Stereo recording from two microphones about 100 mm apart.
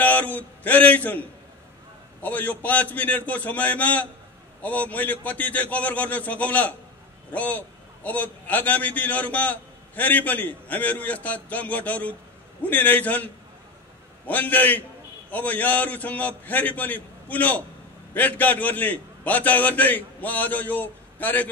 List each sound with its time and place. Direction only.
0.0 s a man's voice: 15° left (ahead or behind)
2.2 s a man's voice: 15° left (ahead or behind)